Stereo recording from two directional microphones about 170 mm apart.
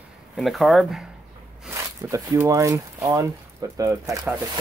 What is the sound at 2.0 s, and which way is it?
Speech, 15° right (ahead or behind).